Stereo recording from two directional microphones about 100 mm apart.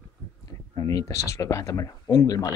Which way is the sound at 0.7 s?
35° left (ahead or behind).